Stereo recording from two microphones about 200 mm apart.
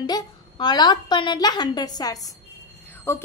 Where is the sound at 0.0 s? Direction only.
20° left (ahead or behind).